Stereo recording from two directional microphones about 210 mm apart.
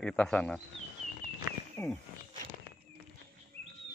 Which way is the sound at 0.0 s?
5° left (ahead or behind).